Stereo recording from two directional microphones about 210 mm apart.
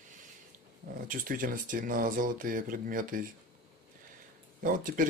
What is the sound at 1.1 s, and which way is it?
Speech, 40° right (ahead or behind).